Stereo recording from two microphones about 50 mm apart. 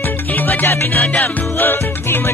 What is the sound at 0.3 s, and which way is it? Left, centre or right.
Music, left.